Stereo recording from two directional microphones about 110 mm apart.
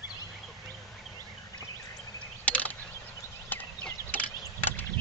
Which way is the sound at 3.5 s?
15° left (ahead or behind).